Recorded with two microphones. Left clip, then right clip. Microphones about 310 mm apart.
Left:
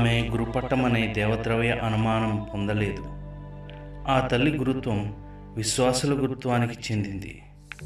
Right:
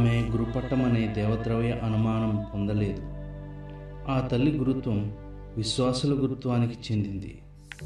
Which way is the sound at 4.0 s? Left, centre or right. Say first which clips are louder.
Left 5 dB; left.